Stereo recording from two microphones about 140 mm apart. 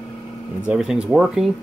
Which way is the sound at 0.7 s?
5° right (ahead or behind).